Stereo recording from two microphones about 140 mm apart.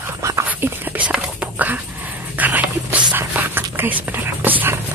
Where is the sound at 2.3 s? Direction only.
10° right (ahead or behind).